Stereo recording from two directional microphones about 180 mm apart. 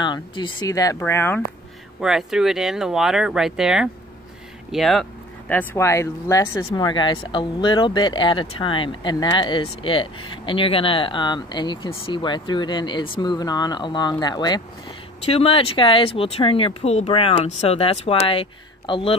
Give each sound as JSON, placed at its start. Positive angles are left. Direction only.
{"t": 0.0, "sound": "speech", "side_deg": 25}
{"t": 2.0, "sound": "speech", "side_deg": 0}
{"t": 5.5, "sound": "speech", "side_deg": 10}